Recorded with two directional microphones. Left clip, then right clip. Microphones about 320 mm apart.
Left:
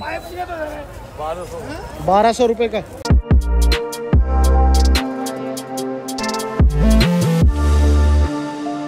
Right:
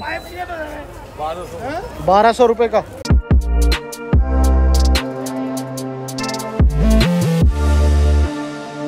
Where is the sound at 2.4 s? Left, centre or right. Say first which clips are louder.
Right 3 dB; centre.